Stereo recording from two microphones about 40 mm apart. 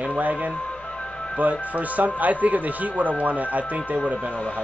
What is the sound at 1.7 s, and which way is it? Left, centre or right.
Speech, right.